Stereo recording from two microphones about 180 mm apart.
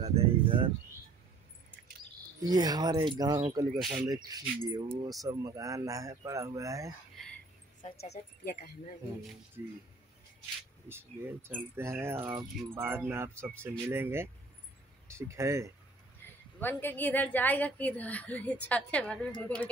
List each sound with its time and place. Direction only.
0.0 s a sound: 30° right (ahead or behind)
2.4 s speech: 20° right (ahead or behind)
7.9 s speech: 65° left (ahead or behind)
10.9 s speech: 15° right (ahead or behind)
16.5 s a woman's voice: 10° left (ahead or behind)